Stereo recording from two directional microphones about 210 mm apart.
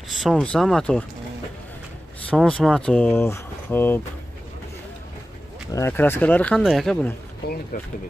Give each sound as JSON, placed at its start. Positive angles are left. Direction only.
{"t": 0.1, "sound": "speech", "side_deg": 0}
{"t": 2.2, "sound": "speech", "side_deg": 5}
{"t": 5.7, "sound": "speech", "side_deg": 15}
{"t": 7.4, "sound": "speech", "side_deg": 50}